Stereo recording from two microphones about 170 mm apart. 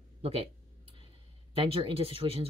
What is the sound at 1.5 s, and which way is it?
Speech, 35° right (ahead or behind).